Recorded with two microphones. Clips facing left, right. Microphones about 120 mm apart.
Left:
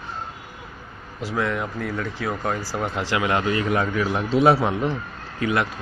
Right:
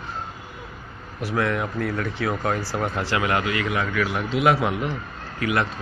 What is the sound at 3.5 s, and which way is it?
A man's voice, 35° left (ahead or behind).